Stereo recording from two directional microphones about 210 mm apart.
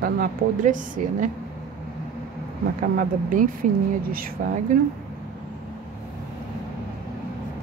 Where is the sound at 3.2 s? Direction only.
40° right (ahead or behind).